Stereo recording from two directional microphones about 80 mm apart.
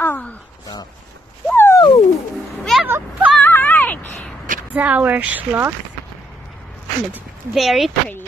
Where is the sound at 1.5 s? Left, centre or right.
Left.